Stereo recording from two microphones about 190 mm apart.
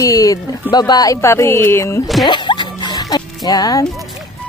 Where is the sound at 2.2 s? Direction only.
25° left (ahead or behind).